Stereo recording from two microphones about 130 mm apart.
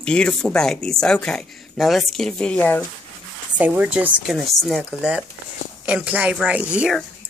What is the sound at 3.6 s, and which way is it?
A woman's voice, 10° right (ahead or behind).